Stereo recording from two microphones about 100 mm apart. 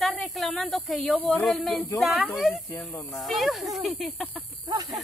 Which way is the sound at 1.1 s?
15° left (ahead or behind).